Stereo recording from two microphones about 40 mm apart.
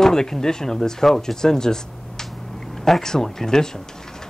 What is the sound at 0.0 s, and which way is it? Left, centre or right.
Speech, centre.